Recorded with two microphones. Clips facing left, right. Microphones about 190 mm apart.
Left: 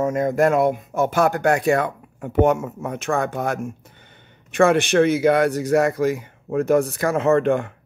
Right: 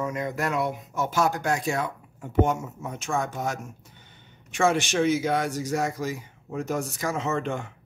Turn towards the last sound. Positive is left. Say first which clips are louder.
# left 11 dB
turn(degrees=60)  # may be behind; listen again after turning